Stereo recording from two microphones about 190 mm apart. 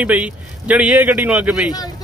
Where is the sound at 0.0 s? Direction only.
10° right (ahead or behind).